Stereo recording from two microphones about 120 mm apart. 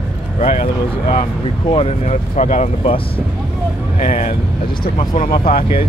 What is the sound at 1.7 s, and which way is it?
Speech, 55° left (ahead or behind).